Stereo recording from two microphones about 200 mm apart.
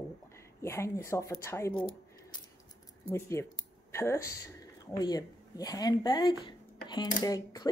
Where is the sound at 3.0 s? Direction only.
15° left (ahead or behind).